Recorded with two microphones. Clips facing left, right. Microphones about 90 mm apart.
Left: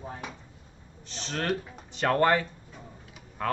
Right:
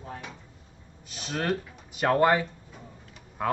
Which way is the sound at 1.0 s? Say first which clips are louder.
Right 1 dB; 10° right (ahead or behind).